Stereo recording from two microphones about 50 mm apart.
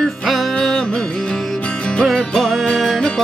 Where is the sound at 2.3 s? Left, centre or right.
Centre.